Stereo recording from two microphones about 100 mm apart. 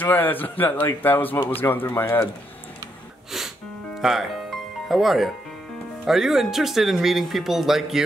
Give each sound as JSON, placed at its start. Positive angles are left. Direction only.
{"t": 0.0, "sound": "a man's voice", "side_deg": 20}
{"t": 3.3, "sound": "music", "side_deg": -5}
{"t": 6.0, "sound": "speech", "side_deg": -5}